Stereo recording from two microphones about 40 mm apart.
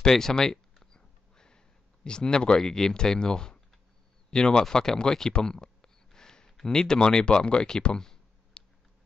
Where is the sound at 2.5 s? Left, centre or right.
Centre.